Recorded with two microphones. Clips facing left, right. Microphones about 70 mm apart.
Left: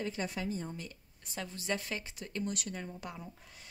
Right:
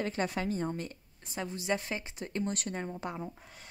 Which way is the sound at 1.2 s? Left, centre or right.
Right.